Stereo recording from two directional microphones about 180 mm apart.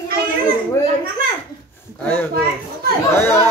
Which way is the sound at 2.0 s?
10° left (ahead or behind).